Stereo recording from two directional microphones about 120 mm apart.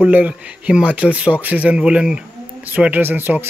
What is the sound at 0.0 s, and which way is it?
Speech, 15° right (ahead or behind).